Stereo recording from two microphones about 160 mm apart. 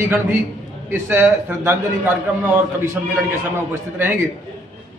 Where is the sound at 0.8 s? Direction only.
10° right (ahead or behind).